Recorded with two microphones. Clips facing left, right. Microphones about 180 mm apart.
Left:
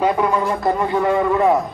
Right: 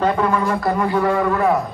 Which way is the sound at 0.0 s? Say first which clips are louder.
Even; 15° left (ahead or behind).